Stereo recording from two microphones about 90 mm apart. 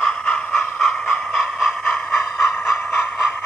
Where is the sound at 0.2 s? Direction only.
20° left (ahead or behind).